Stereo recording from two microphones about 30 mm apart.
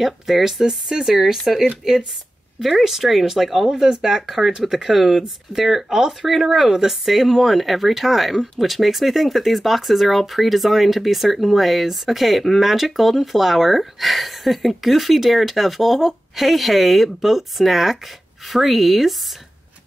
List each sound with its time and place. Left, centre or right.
0.0 s speech: centre
2.7 s speech: centre